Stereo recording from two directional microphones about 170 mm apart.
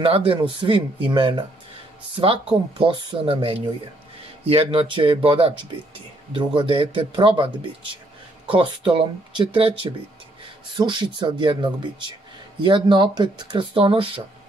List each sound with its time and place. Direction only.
0.0 s speech: 35° right (ahead or behind)
10.8 s speech: 25° right (ahead or behind)